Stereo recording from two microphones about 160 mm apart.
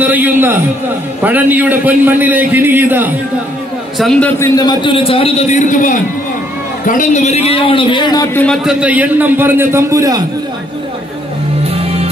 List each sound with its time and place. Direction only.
0.0 s a man's voice: 10° right (ahead or behind)
4.0 s a man's voice: 5° left (ahead or behind)
4.4 s a man's voice: 25° left (ahead or behind)
8.6 s a man's voice: 10° right (ahead or behind)
11.7 s music: 40° right (ahead or behind)